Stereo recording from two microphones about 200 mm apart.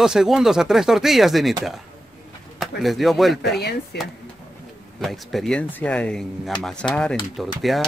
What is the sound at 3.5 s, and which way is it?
Speech, 55° left (ahead or behind).